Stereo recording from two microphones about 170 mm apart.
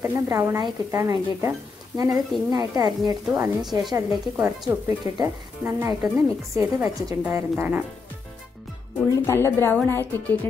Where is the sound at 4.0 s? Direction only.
20° right (ahead or behind).